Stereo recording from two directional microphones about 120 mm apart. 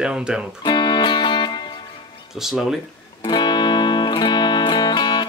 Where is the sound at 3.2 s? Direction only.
35° left (ahead or behind).